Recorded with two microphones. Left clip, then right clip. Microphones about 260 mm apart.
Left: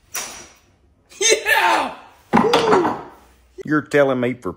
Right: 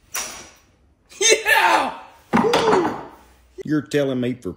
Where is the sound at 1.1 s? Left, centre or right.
Centre.